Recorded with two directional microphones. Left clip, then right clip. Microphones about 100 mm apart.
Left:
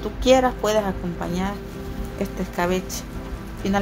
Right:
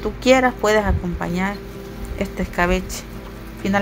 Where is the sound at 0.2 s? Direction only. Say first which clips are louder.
Right 2 dB; 30° right (ahead or behind).